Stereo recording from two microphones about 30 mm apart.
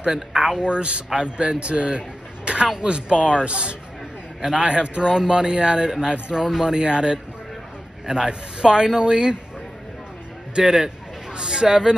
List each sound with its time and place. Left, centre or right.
0.3 s speech: centre
0.7 s a man's voice: right
10.6 s speech: centre